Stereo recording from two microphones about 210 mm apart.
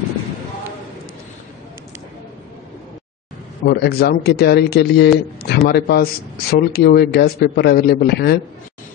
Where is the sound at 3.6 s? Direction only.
50° left (ahead or behind).